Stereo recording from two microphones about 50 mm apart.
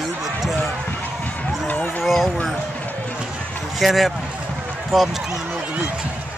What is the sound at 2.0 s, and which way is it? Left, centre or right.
Speech, centre.